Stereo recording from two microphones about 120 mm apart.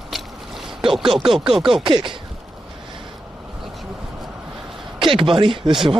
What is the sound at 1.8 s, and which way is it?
Speech, 45° right (ahead or behind).